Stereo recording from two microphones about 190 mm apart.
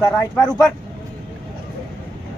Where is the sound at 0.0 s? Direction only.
5° left (ahead or behind).